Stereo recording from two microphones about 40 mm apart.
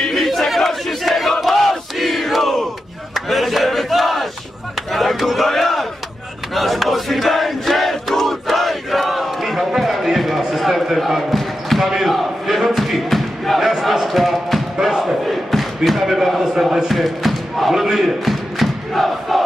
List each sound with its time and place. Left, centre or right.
0.0 s battle cry: centre
6.5 s crowd: centre
9.8 s a sound: centre
11.0 s basketball bounce: centre
11.9 s a sound: centre
13.7 s basketball bounce: centre
15.2 s a sound: centre
16.9 s basketball bounce: centre
17.8 s crowd: centre